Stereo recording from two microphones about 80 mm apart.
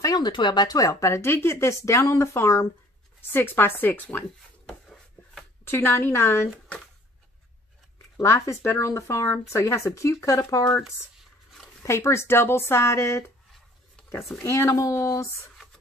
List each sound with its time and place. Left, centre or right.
0.0 s a sound: left
0.3 s speech: left
4.6 s a sound: centre
5.7 s speech: left
8.2 s speech: left
11.8 s speech: left
14.4 s speech: left